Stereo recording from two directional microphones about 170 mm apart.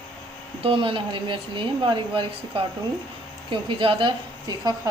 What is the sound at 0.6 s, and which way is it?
A woman's voice, 30° right (ahead or behind).